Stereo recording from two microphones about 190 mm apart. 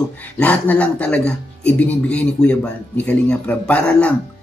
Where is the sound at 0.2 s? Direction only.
5° left (ahead or behind).